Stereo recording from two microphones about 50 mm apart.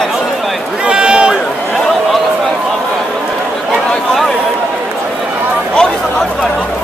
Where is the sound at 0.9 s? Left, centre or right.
Centre.